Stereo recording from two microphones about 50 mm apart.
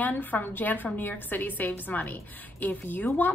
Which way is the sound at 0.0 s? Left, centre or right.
Left.